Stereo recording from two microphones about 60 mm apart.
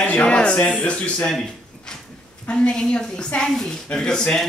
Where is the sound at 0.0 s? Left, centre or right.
Left.